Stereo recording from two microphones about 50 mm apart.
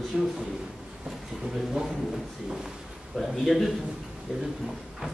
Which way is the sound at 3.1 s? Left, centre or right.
Centre.